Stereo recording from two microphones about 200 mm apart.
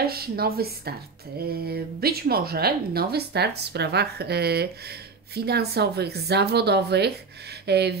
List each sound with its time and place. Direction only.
0.0 s speech: 50° right (ahead or behind)
1.7 s speech: 50° right (ahead or behind)